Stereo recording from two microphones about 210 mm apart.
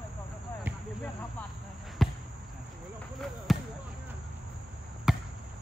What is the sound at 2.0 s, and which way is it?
Basketball bounce, centre (ahead or behind).